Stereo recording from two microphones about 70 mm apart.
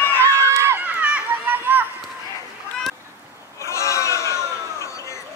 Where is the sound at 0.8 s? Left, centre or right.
Right.